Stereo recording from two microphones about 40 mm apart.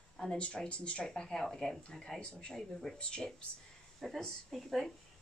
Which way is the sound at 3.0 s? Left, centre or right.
Left.